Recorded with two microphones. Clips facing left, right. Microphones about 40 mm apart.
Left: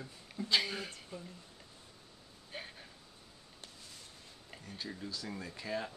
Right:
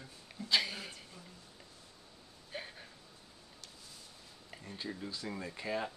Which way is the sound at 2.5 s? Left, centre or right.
Centre.